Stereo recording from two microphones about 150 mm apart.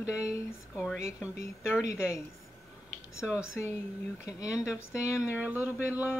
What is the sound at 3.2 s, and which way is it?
Speech, 5° right (ahead or behind).